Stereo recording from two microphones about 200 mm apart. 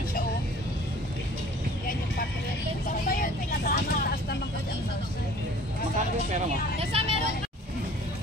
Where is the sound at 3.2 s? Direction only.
45° left (ahead or behind).